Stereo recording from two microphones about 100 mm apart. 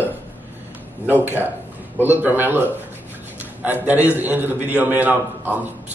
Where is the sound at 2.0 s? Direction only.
20° right (ahead or behind).